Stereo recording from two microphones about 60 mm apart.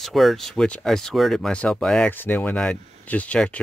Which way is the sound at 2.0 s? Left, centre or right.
Left.